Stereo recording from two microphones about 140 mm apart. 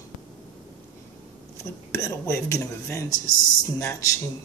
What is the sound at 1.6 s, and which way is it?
Speech, 20° left (ahead or behind).